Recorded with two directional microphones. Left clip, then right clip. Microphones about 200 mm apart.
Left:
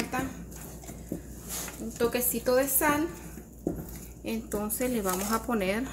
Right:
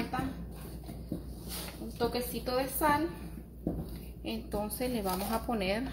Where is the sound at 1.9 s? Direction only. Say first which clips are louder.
Left 5 dB; 30° left (ahead or behind).